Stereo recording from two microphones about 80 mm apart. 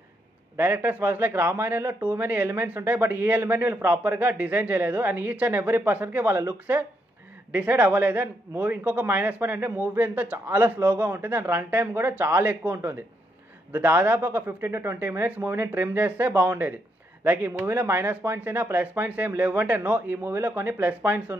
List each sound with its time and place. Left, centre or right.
0.6 s speech: right
7.5 s speech: centre